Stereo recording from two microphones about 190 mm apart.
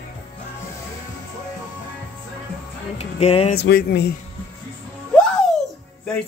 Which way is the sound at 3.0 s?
35° left (ahead or behind).